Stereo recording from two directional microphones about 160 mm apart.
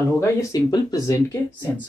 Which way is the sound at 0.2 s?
20° left (ahead or behind).